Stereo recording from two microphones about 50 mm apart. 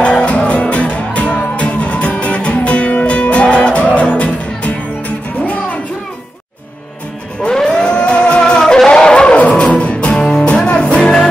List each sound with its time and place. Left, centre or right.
0.0 s music: left
7.4 s music: centre